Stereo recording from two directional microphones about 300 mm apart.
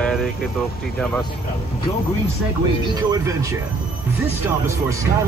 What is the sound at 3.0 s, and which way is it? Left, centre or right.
Speech, centre.